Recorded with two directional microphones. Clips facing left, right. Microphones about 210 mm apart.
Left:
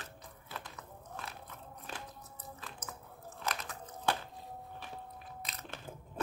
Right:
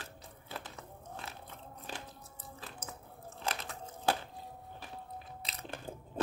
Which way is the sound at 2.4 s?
30° right (ahead or behind).